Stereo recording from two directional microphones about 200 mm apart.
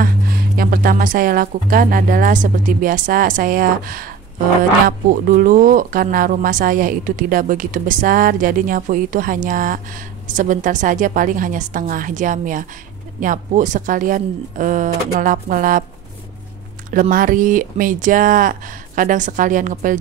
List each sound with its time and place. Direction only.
0.0 s speech: 45° right (ahead or behind)
16.9 s speech: 45° right (ahead or behind)